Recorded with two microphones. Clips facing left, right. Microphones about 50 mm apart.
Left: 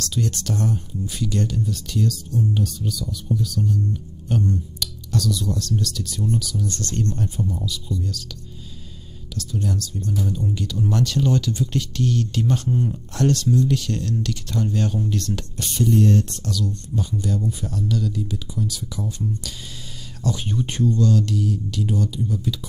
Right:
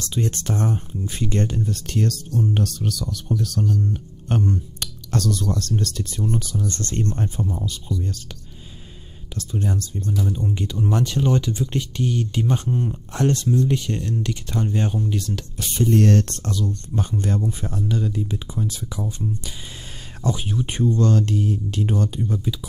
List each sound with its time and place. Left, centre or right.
0.0 s speech: right
3.9 s music: right
4.5 s speech: right
9.3 s speech: right
15.0 s speech: centre
15.9 s speech: right
16.4 s speech: right
20.3 s speech: centre
20.7 s speech: right
21.0 s speech: right